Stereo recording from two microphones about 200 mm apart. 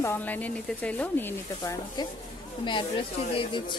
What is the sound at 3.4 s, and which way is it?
Speech, 25° left (ahead or behind).